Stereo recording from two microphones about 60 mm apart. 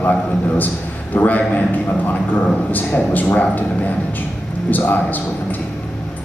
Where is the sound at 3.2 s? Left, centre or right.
Centre.